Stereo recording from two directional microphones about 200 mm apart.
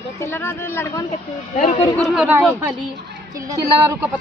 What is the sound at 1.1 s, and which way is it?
Speech, 30° left (ahead or behind).